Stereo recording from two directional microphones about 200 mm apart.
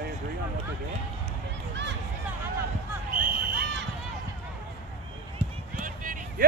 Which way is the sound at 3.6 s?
60° right (ahead or behind).